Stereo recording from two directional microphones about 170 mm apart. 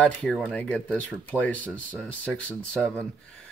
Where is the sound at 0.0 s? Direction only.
5° left (ahead or behind).